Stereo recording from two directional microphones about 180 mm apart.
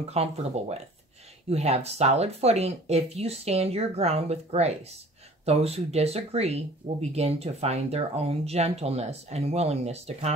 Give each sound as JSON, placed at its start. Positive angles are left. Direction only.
{"t": 0.1, "sound": "speech", "side_deg": -35}